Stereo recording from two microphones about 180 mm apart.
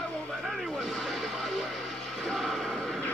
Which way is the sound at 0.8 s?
Centre (ahead or behind).